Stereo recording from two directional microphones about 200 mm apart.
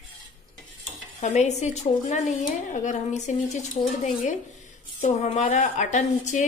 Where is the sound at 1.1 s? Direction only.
35° left (ahead or behind).